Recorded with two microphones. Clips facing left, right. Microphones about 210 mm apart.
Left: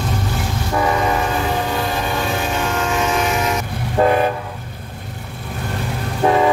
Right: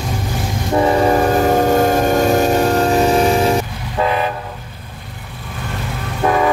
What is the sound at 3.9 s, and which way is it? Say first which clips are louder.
Train: left 3 dB; 50° left (ahead or behind).